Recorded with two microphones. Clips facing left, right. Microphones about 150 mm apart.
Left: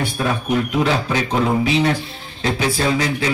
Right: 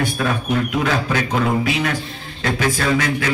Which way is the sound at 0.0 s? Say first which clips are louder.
Even; 30° left (ahead or behind).